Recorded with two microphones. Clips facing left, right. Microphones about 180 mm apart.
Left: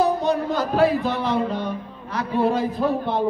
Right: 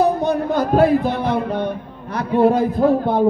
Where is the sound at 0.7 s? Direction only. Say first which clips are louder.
Right 4 dB; 55° right (ahead or behind).